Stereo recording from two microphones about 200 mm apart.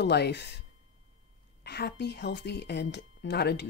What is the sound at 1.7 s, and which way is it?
A woman's voice, 55° left (ahead or behind).